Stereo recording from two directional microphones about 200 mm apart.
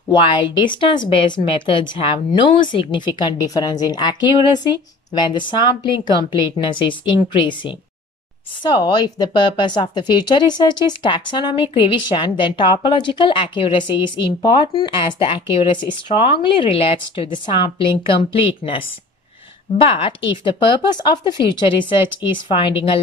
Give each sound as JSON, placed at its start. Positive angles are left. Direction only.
{"t": 0.1, "sound": "speech", "side_deg": 25}
{"t": 19.8, "sound": "speech", "side_deg": 25}